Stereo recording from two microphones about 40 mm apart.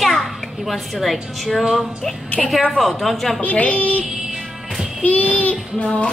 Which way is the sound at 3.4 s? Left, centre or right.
Left.